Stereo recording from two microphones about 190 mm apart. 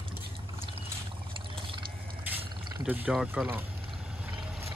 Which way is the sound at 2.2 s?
10° right (ahead or behind).